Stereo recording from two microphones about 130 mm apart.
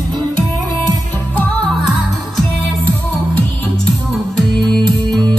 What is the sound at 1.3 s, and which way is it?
Music, 10° left (ahead or behind).